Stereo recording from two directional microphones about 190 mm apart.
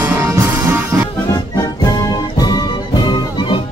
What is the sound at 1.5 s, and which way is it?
Music, 20° left (ahead or behind).